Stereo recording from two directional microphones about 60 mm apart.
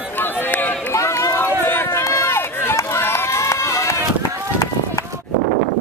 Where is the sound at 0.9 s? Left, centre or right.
Left.